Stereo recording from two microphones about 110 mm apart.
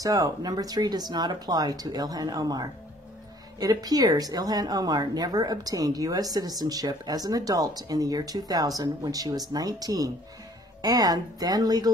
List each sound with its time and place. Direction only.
0.0 s speech: 30° right (ahead or behind)